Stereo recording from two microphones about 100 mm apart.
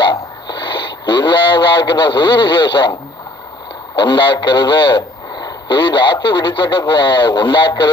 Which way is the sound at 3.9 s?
50° left (ahead or behind).